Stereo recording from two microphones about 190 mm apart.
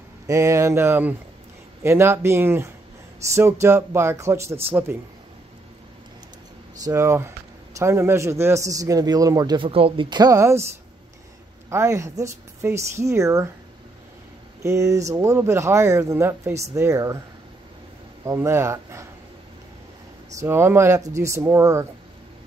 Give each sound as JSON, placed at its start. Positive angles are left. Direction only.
{"t": 0.3, "sound": "speech", "side_deg": -15}
{"t": 6.8, "sound": "speech", "side_deg": -15}
{"t": 11.7, "sound": "speech", "side_deg": -15}
{"t": 14.6, "sound": "speech", "side_deg": -15}
{"t": 18.2, "sound": "speech", "side_deg": -15}
{"t": 20.3, "sound": "speech", "side_deg": -15}